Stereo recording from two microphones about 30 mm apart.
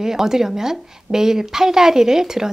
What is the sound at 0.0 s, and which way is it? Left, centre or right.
A woman's voice, centre.